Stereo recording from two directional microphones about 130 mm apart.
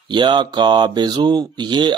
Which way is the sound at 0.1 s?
35° right (ahead or behind).